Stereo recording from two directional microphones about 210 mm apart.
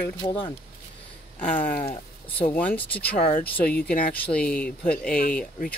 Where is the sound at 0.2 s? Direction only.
25° left (ahead or behind).